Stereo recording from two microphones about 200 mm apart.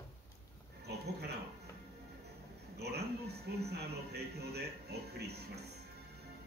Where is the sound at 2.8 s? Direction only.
55° right (ahead or behind).